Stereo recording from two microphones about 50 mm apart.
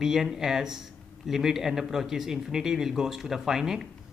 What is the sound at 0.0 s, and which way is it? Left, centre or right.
Speech, centre.